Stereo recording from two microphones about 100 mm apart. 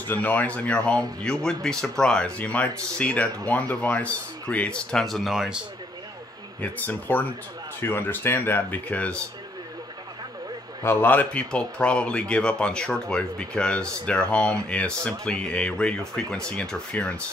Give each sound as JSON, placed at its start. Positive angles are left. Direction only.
{"t": 0.1, "sound": "speech", "side_deg": 15}
{"t": 6.6, "sound": "speech", "side_deg": 15}
{"t": 10.8, "sound": "speech", "side_deg": 25}